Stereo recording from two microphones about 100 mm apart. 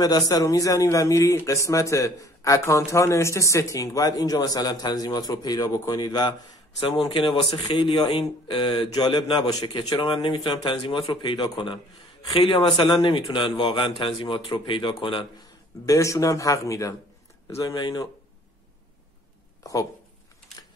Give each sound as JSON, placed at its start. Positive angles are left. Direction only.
{"t": 0.0, "sound": "speech", "side_deg": 40}
{"t": 7.1, "sound": "a man's voice", "side_deg": 60}
{"t": 7.7, "sound": "speech", "side_deg": 45}
{"t": 9.8, "sound": "a man's voice", "side_deg": 55}
{"t": 15.8, "sound": "speech", "side_deg": 30}
{"t": 17.7, "sound": "speech", "side_deg": 45}
{"t": 19.6, "sound": "speech", "side_deg": 35}